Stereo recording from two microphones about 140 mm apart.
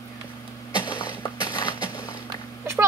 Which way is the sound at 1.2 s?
30° left (ahead or behind).